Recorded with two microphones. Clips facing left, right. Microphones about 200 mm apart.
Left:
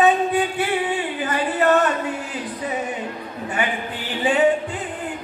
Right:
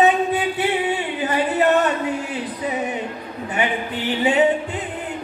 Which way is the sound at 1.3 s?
20° right (ahead or behind).